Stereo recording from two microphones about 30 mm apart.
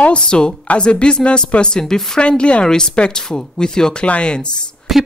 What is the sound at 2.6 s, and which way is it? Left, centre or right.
Speech, left.